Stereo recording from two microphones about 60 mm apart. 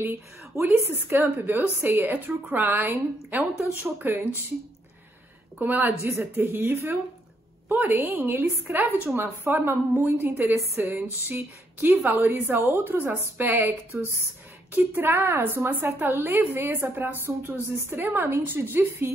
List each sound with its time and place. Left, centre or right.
0.0 s a woman's voice: right
5.6 s a woman's voice: right
14.9 s a woman's voice: right